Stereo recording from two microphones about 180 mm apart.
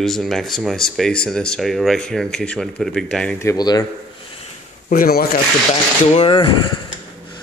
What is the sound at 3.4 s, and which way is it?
Speech, 20° left (ahead or behind).